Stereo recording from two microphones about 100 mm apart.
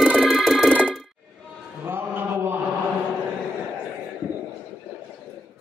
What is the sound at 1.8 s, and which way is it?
Mantra, 20° right (ahead or behind).